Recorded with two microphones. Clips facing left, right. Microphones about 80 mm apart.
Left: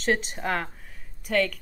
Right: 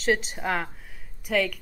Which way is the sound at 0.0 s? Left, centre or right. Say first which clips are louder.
Right 1 dB; centre.